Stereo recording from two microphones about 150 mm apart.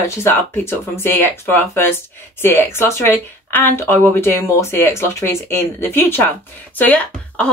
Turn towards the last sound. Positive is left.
turn(degrees=10)  # may be behind; listen again after turning